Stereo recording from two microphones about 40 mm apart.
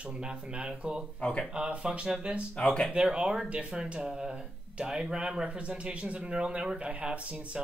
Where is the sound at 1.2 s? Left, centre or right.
Left.